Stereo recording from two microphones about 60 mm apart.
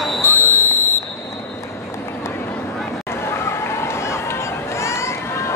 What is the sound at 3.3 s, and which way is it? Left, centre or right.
Run, left.